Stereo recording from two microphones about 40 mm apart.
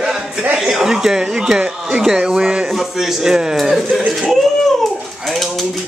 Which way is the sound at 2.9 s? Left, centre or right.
Centre.